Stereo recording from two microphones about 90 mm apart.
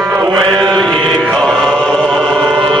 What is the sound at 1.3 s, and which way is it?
Chant, 5° left (ahead or behind).